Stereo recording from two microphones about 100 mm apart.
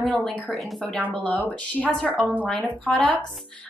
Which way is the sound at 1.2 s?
15° left (ahead or behind).